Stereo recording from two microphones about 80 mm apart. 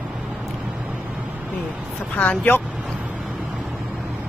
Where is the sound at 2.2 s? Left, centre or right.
Left.